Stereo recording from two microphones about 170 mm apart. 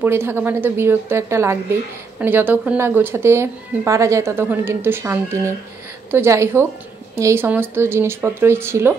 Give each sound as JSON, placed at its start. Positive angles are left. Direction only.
{"t": 0.0, "sound": "speech", "side_deg": -15}